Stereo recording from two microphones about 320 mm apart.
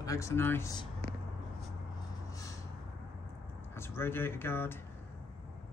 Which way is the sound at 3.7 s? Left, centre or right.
Centre.